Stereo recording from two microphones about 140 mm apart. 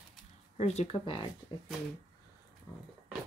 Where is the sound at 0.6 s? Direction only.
50° left (ahead or behind).